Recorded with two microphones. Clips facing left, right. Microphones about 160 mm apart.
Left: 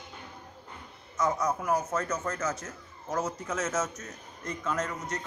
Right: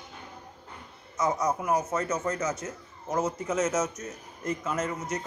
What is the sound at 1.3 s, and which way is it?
Speech, 15° right (ahead or behind).